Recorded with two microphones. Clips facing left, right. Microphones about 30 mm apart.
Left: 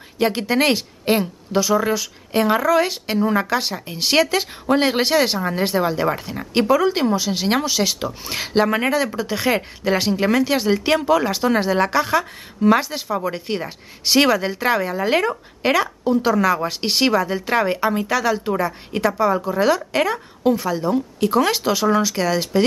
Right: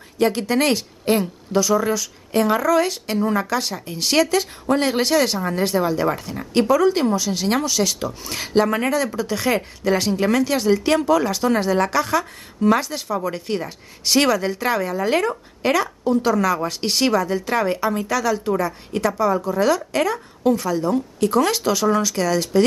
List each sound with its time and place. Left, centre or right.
0.2 s speech: centre